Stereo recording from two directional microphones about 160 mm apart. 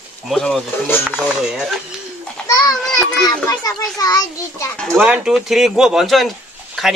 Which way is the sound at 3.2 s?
25° left (ahead or behind).